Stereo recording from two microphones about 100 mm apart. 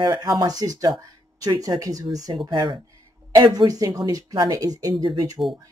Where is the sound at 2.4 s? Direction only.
45° right (ahead or behind).